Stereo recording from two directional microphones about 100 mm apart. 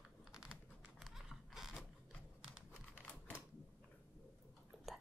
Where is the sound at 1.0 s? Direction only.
Centre (ahead or behind).